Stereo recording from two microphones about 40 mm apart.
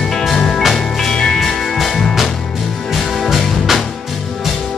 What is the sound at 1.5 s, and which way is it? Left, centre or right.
Music, centre.